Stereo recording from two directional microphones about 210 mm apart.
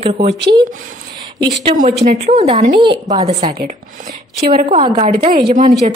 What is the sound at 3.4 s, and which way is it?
A woman's voice, 35° right (ahead or behind).